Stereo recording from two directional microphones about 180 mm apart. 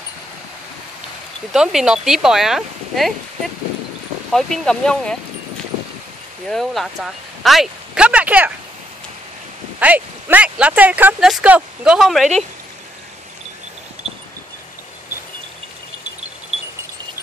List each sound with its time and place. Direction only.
1.5 s speech: centre (ahead or behind)
4.3 s speech: centre (ahead or behind)
6.4 s speech: centre (ahead or behind)
9.8 s speech: 10° right (ahead or behind)